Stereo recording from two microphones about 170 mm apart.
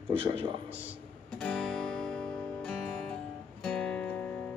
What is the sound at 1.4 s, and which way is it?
Music, 5° left (ahead or behind).